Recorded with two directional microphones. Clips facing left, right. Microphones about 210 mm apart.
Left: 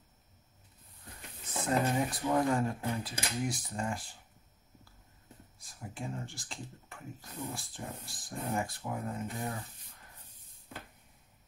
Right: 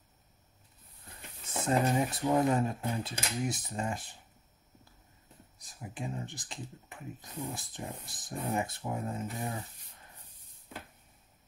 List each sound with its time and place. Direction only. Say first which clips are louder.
1.6 s speech: right 2 dB; 25° right (ahead or behind)
5.6 s speech: right 2 dB; 20° right (ahead or behind)